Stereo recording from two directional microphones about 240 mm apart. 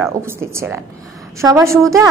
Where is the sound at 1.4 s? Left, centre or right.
Centre.